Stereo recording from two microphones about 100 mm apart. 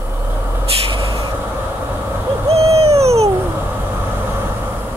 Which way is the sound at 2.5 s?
80° right.